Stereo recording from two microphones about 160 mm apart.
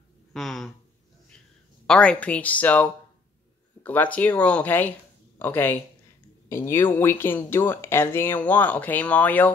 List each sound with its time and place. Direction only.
0.3 s speech: centre (ahead or behind)
1.9 s speech: 5° left (ahead or behind)